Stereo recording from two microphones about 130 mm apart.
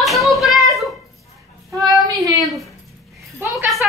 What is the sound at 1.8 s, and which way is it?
Child singing, 30° right (ahead or behind).